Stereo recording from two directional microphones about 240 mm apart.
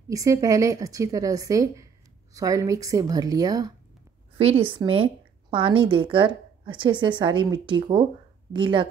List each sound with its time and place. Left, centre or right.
0.1 s a woman's voice: centre